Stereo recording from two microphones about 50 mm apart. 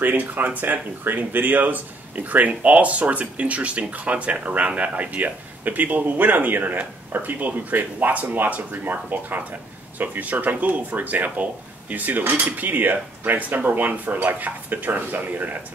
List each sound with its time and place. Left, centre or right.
0.0 s speech: right